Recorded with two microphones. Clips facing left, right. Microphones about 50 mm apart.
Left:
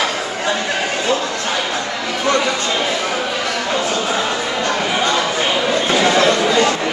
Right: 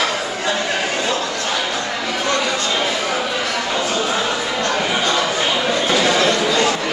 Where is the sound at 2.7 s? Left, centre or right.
Centre.